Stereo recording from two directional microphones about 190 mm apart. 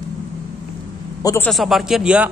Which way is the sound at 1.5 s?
Centre (ahead or behind).